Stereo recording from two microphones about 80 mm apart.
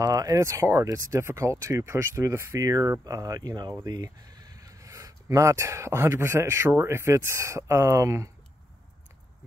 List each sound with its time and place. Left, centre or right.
0.0 s speech: right